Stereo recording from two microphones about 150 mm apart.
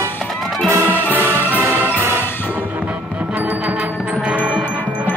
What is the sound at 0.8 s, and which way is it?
Music, 15° left (ahead or behind).